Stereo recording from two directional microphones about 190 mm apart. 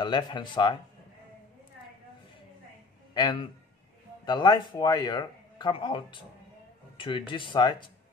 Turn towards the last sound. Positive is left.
turn(degrees=25)  # may be behind; listen again after turning